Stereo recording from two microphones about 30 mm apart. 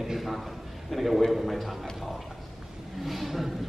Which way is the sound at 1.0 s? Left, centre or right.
Centre.